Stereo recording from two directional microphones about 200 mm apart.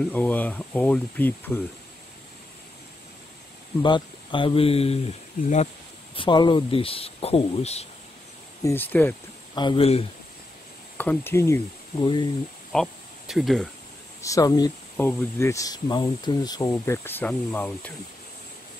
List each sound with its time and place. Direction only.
0.0 s speech: 10° left (ahead or behind)
3.8 s speech: 25° left (ahead or behind)
5.4 s speech: 45° left (ahead or behind)
6.1 s speech: 25° left (ahead or behind)
8.6 s speech: 10° left (ahead or behind)
9.6 s speech: 25° left (ahead or behind)
11.0 s speech: 10° left (ahead or behind)
12.7 s speech: centre (ahead or behind)
14.2 s speech: 15° left (ahead or behind)